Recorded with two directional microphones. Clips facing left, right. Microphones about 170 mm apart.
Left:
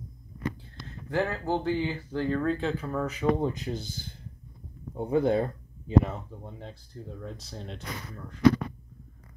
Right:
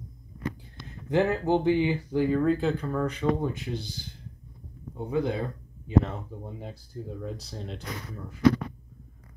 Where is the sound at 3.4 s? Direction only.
35° left (ahead or behind).